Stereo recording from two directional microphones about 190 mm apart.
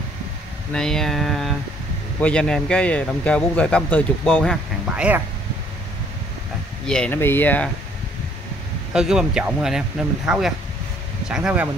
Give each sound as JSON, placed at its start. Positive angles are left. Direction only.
{"t": 0.7, "sound": "speech", "side_deg": 5}
{"t": 4.8, "sound": "speech", "side_deg": -5}
{"t": 6.9, "sound": "speech", "side_deg": 10}
{"t": 8.9, "sound": "speech", "side_deg": -5}